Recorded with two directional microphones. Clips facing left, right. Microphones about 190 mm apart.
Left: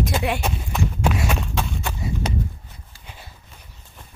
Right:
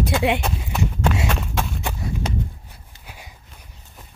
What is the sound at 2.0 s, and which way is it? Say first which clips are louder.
Walk: left 2 dB; 5° left (ahead or behind).